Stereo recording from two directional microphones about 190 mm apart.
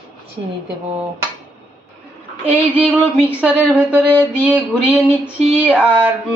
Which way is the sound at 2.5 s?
5° right (ahead or behind).